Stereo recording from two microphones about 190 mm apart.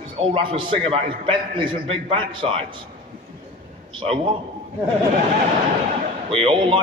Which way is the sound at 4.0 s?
25° right (ahead or behind).